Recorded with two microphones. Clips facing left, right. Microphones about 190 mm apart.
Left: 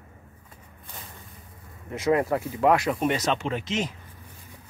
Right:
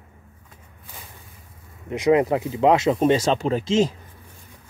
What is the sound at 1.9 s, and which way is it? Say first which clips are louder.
Speech: right 5 dB; 20° right (ahead or behind).